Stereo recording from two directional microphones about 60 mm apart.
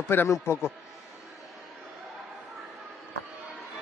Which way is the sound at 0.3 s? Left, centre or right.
Left.